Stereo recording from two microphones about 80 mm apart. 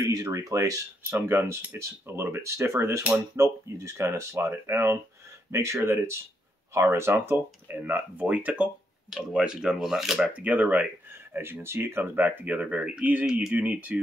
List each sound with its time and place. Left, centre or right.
0.1 s speech: right
1.1 s speech: right; by 10.2 s centre
10.2 s speech: centre
11.3 s speech: right